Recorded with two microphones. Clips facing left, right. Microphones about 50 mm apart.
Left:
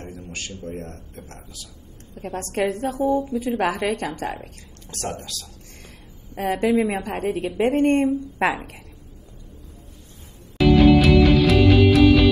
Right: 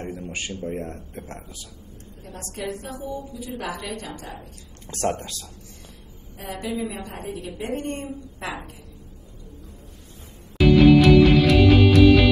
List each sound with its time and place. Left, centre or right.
0.0 s speech: right
2.1 s a woman's voice: left
4.8 s speech: right
6.4 s a woman's voice: left
7.0 s a woman's voice: left
11.0 s music: centre